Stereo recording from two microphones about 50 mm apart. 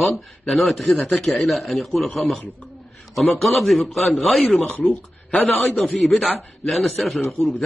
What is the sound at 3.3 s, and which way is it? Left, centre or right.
A man's voice, centre.